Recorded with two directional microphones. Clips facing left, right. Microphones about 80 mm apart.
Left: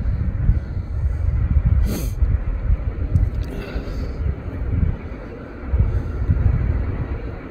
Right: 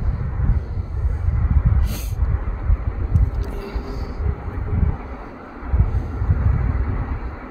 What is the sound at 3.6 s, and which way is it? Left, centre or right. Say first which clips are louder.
Vehicle: left 2 dB; left.